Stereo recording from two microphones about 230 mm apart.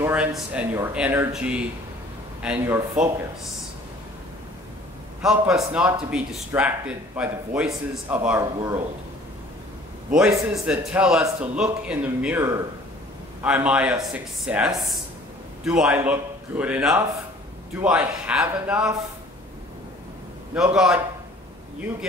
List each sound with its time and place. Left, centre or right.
0.0 s speech: centre
5.2 s speech: centre
10.5 s speech: centre
20.7 s speech: centre